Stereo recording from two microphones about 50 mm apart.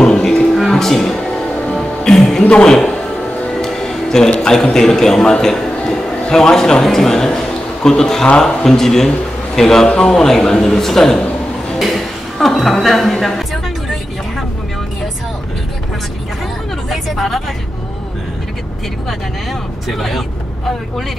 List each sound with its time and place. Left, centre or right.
0.0 s music: centre
2.4 s speech: left
3.6 s music: centre
4.7 s a man's voice: centre
11.8 s a sound: centre
12.8 s music: centre
16.9 s a sound: centre
19.9 s speech: centre